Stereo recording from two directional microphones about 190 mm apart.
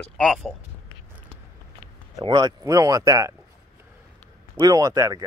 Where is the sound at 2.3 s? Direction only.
20° right (ahead or behind).